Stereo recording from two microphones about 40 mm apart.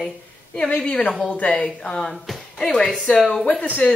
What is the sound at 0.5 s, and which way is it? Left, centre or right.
Speech, left.